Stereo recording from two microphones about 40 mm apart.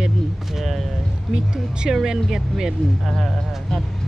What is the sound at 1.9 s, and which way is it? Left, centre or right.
Speech, centre.